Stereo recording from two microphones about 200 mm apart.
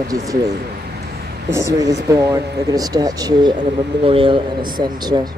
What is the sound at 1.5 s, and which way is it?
Speech, 15° right (ahead or behind).